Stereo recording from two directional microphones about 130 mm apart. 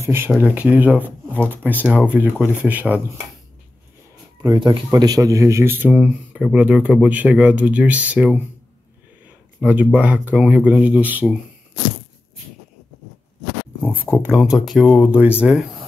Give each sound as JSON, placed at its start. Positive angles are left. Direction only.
{"t": 0.0, "sound": "speech", "side_deg": -20}
{"t": 4.4, "sound": "speech", "side_deg": -35}
{"t": 9.6, "sound": "speech", "side_deg": -10}
{"t": 14.2, "sound": "speech", "side_deg": -5}